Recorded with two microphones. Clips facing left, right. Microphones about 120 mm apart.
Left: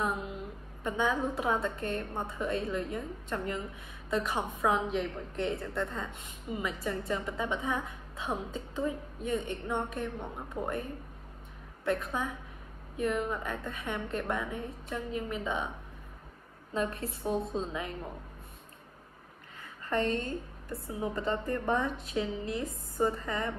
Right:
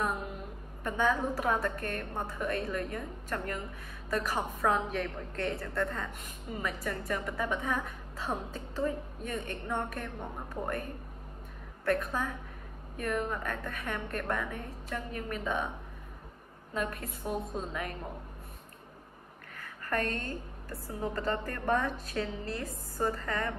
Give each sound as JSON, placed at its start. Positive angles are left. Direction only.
{"t": 0.8, "sound": "a woman's voice", "side_deg": 20}
{"t": 16.7, "sound": "a woman's voice", "side_deg": 30}
{"t": 19.6, "sound": "a woman's voice", "side_deg": 20}